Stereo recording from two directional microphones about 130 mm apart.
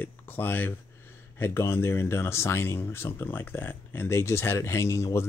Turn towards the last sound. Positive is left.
turn(degrees=20)  # may be behind; listen again after turning